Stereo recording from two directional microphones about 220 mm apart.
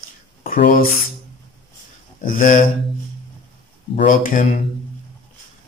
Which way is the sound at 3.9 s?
40° left (ahead or behind).